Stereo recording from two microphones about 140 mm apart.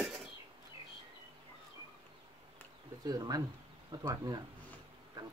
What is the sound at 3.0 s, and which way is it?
Speech, 25° right (ahead or behind).